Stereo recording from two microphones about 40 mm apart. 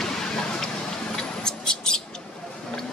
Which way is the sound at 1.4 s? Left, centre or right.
Centre.